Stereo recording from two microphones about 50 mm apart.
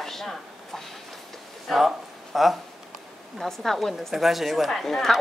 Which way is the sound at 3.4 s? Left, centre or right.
Centre.